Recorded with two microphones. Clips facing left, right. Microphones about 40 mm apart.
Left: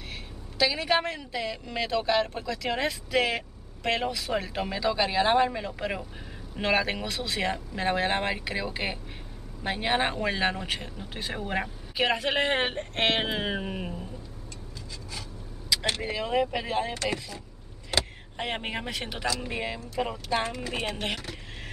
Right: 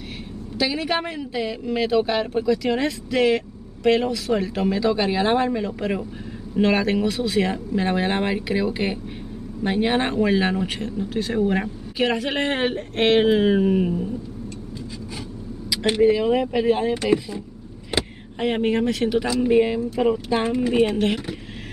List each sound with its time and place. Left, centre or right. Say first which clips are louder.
0.6 s speech: right 2 dB; centre
16.0 s speech: right 14 dB; centre
17.9 s vehicle: right 4 dB; centre
18.4 s speech: right 11 dB; centre
19.2 s speech: right 11 dB; centre
20.4 s speech: right 12 dB; centre